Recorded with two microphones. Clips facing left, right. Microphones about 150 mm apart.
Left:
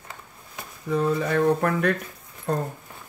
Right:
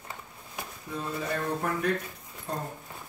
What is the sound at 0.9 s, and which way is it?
Speech, 80° left.